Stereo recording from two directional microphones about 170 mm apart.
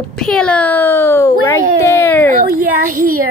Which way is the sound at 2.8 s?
55° right (ahead or behind).